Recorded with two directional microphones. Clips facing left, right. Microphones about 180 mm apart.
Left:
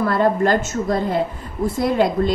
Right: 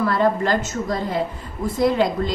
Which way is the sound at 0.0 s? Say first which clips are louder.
Left 2 dB; 50° left (ahead or behind).